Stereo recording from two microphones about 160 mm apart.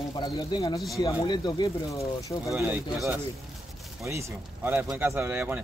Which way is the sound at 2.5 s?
15° right (ahead or behind).